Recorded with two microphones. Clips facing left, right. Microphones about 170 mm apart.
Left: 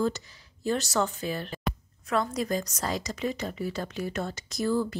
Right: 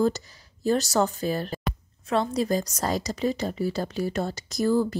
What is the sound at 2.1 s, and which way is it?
Speech, 25° right (ahead or behind).